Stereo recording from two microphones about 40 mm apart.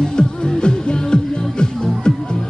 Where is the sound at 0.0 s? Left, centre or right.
Centre.